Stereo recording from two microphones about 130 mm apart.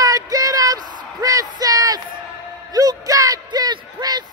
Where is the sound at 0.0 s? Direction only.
25° right (ahead or behind).